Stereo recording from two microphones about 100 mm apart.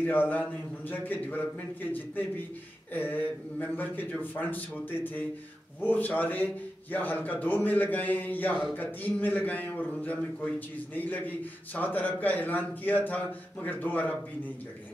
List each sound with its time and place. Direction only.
0.0 s a man's voice: 20° left (ahead or behind)
5.8 s a man's voice: 15° left (ahead or behind)